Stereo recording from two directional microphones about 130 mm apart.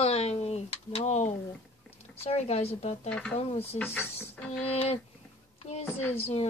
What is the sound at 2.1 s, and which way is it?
Speech, 50° left (ahead or behind).